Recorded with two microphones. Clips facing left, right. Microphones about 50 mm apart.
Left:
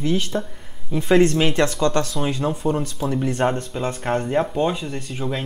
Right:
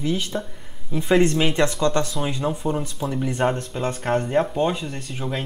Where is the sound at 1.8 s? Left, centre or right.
Centre.